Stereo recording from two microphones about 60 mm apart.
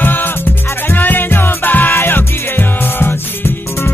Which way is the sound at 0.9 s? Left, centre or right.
Left.